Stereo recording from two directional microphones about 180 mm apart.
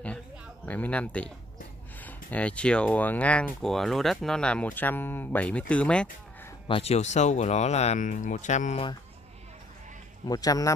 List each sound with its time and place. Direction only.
0.7 s speech: 10° left (ahead or behind)
6.7 s speech: 35° left (ahead or behind)
10.2 s speech: 20° left (ahead or behind)